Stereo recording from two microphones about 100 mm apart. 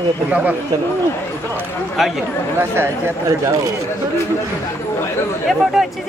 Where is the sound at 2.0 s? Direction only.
Centre (ahead or behind).